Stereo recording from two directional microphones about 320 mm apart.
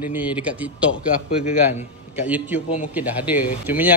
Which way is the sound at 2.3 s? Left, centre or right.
Centre.